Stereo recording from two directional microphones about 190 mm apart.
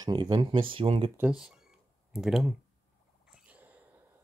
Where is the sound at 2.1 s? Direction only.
Centre (ahead or behind).